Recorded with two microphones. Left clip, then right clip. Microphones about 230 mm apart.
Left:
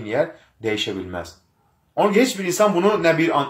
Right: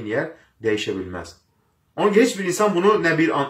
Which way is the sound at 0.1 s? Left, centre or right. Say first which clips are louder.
Left 4 dB; centre.